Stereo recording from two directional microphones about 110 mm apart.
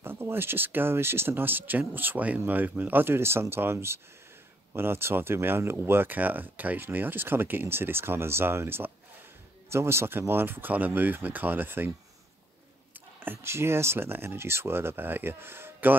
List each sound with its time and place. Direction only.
0.0 s speech: 20° right (ahead or behind)
13.2 s speech: 20° right (ahead or behind)